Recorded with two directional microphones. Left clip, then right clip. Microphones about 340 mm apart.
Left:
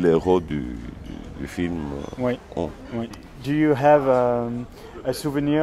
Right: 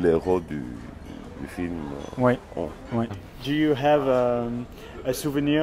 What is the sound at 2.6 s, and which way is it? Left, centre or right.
Speech, left.